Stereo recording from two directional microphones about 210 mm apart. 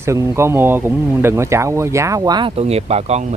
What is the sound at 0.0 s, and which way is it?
Speech, 15° right (ahead or behind).